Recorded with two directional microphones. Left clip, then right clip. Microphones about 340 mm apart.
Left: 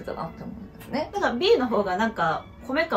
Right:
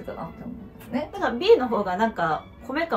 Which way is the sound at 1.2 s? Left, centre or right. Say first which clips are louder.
Right 3 dB; centre.